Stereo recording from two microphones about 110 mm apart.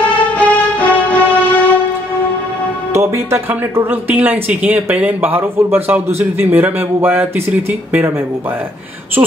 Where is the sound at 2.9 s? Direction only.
25° right (ahead or behind).